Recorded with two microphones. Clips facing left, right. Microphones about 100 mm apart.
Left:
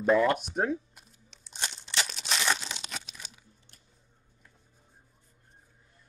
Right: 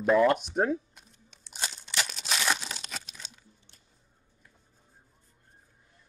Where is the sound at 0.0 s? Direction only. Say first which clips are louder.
Right 1 dB; centre (ahead or behind).